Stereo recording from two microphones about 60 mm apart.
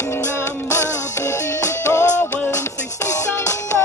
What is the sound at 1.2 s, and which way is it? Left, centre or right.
Music, left.